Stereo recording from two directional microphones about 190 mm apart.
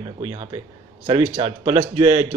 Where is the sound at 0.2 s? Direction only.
25° right (ahead or behind).